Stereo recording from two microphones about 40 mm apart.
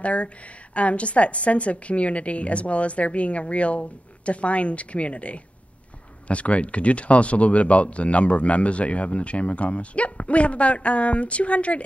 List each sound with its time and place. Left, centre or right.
0.0 s speech: left